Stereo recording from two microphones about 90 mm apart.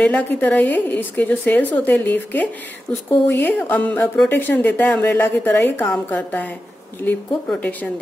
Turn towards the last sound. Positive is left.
turn(degrees=15)  # may be behind; listen again after turning